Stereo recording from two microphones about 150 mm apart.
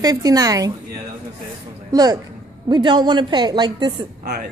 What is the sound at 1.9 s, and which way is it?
A man's voice, 25° right (ahead or behind).